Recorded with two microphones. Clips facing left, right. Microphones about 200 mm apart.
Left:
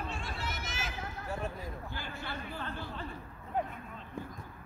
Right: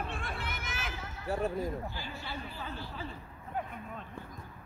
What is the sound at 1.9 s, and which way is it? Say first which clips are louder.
Speech: left 1 dB; 55° left (ahead or behind).